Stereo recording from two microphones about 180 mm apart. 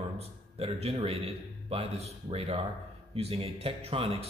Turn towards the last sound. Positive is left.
turn(degrees=-30)  # may be behind; listen again after turning